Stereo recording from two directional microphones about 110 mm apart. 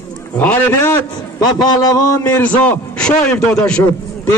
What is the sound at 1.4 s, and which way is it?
Speech, 40° left (ahead or behind).